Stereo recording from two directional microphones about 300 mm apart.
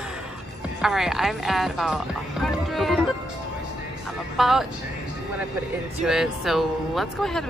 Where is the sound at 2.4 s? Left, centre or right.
Centre.